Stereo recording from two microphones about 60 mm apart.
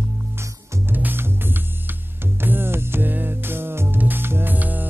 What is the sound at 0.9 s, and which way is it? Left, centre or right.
Music, right.